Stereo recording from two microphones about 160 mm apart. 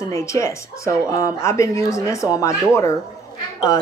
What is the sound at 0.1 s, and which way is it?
A woman's voice, 20° left (ahead or behind).